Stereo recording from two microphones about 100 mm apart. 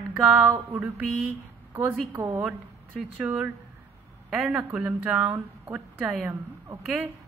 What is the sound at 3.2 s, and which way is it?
Speech, 15° right (ahead or behind).